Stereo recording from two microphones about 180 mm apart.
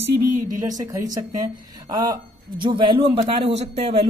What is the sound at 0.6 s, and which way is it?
Speech, 20° right (ahead or behind).